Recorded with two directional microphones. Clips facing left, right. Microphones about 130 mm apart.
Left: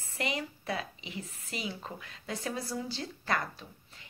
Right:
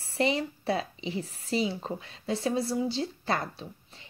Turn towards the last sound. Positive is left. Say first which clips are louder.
# right 3 dB
turn(degrees=-25)  # may be behind; listen again after turning